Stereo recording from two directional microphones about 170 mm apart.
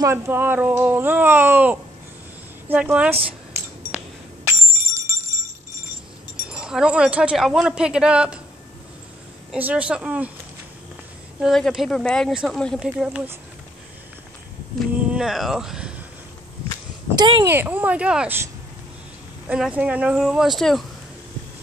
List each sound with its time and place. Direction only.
0.0 s speech: 15° right (ahead or behind)
3.5 s a sound: 15° right (ahead or behind)
6.5 s speech: 5° right (ahead or behind)
9.5 s speech: 10° right (ahead or behind)
11.4 s speech: centre (ahead or behind)
14.8 s speech: centre (ahead or behind)
17.2 s speech: 25° right (ahead or behind)
17.5 s speech: 10° right (ahead or behind)
19.5 s speech: 10° right (ahead or behind)